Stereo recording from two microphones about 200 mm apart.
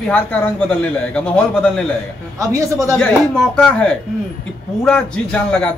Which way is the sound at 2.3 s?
15° right (ahead or behind).